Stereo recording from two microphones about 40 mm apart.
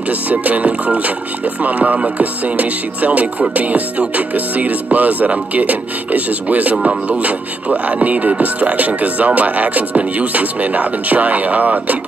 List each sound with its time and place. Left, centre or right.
0.3 s speech: right